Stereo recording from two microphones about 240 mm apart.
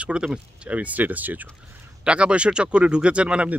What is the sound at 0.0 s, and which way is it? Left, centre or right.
Speech, centre.